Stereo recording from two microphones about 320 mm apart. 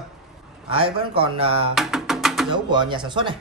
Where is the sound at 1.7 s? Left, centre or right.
Centre.